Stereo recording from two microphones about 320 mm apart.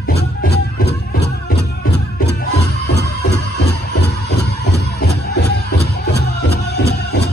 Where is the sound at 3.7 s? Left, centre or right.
Left.